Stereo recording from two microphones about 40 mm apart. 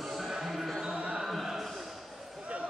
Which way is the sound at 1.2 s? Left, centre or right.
Centre.